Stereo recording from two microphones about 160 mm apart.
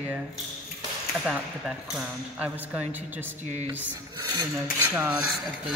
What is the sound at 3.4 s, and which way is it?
Speech, 45° right (ahead or behind).